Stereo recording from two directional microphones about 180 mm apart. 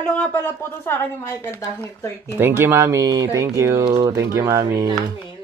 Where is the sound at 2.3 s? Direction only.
10° right (ahead or behind).